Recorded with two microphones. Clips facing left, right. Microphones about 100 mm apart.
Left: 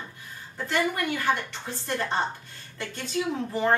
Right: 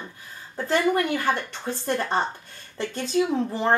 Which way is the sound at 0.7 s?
30° right (ahead or behind).